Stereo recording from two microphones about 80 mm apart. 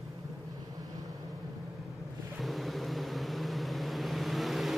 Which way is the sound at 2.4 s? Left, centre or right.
Centre.